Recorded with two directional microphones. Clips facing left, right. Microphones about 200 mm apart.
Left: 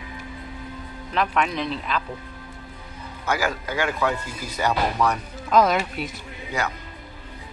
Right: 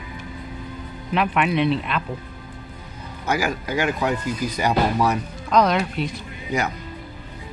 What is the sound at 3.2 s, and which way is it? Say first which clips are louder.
Speech: right 2 dB; 15° right (ahead or behind).